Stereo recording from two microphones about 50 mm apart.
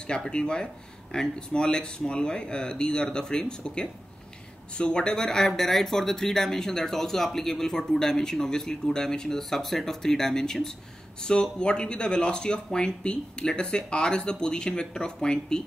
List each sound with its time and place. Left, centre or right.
0.0 s speech: centre